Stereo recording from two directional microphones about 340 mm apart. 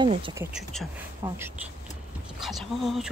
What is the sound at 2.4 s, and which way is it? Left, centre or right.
Speech, centre.